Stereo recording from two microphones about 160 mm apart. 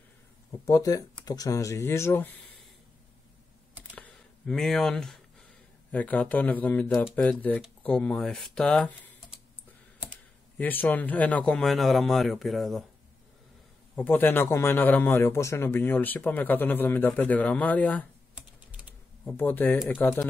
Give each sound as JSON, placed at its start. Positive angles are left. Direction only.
{"t": 0.7, "sound": "speech", "side_deg": 20}
{"t": 3.9, "sound": "a sound", "side_deg": 5}
{"t": 5.9, "sound": "a man's voice", "side_deg": 10}
{"t": 10.6, "sound": "speech", "side_deg": 10}
{"t": 13.9, "sound": "a man's voice", "side_deg": 10}
{"t": 18.3, "sound": "typing", "side_deg": -10}
{"t": 19.2, "sound": "a man's voice", "side_deg": 10}